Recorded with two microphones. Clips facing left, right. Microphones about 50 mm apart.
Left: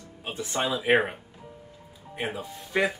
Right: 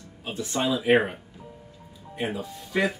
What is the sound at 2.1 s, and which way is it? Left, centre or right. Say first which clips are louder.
Speech: right 2 dB; centre.